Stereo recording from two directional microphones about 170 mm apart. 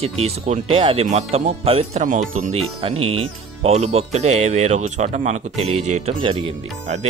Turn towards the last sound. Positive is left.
turn(degrees=-30)  # may be behind; listen again after turning